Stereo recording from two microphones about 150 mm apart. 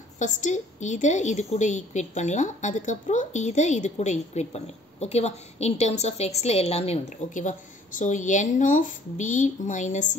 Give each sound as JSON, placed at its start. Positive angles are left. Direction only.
{"t": 0.2, "sound": "a woman's voice", "side_deg": 55}